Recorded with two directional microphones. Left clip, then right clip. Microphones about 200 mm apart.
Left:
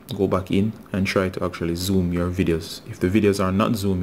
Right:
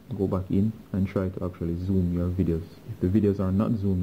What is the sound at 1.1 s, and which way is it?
Speech, 20° left (ahead or behind).